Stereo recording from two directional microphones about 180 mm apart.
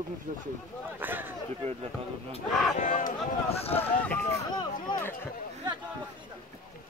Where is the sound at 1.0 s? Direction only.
10° right (ahead or behind).